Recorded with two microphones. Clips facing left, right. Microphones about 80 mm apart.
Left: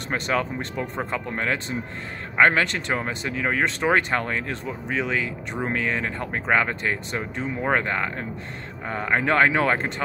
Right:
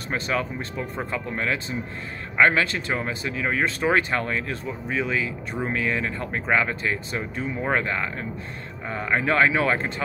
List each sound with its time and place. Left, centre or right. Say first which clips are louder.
0.1 s speech: left 2 dB; left